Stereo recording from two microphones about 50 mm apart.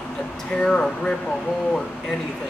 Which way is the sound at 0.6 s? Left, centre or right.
Centre.